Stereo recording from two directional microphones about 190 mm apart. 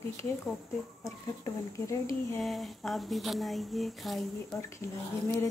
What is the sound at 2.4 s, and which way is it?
Speech, centre (ahead or behind).